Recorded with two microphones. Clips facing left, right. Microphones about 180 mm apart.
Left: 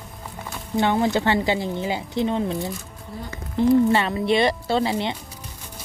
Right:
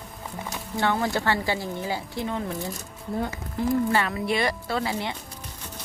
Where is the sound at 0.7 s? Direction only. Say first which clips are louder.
Left 5 dB; 20° left (ahead or behind).